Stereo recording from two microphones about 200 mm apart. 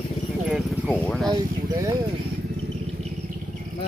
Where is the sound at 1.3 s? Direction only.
20° right (ahead or behind).